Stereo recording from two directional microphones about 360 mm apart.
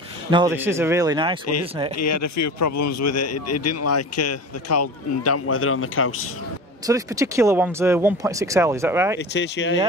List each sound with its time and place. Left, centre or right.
0.3 s speech: centre
2.0 s a man's voice: left
6.9 s speech: centre
9.3 s speech: left